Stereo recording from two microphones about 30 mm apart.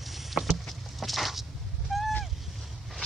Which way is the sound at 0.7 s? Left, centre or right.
Centre.